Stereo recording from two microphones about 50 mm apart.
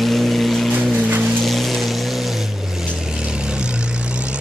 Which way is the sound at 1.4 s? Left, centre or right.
Centre.